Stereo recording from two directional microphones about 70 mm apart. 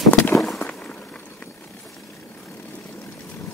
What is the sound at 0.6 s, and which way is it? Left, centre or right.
Walk, centre.